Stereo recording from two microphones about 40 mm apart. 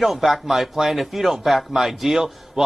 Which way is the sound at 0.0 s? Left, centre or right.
Centre.